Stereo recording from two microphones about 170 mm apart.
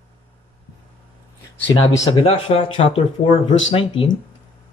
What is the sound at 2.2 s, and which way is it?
A man's voice, 35° left (ahead or behind).